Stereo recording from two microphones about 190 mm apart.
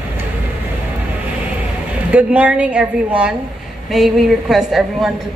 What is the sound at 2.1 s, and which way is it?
A woman's voice, 5° right (ahead or behind).